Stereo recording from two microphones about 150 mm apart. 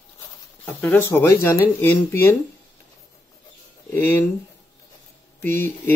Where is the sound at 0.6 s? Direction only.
10° left (ahead or behind).